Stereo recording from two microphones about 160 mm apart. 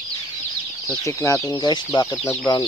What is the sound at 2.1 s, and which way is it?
Speech, 10° left (ahead or behind).